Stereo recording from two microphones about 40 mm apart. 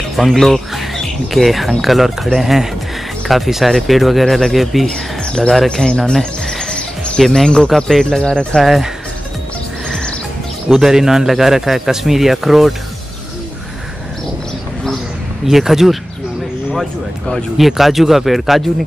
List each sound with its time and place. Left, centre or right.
0.1 s speech: centre
5.7 s speech: centre
6.4 s music: centre
7.2 s speech: centre
8.6 s speech: centre
9.8 s music: centre
10.7 s speech: centre
15.4 s speech: centre
17.6 s speech: centre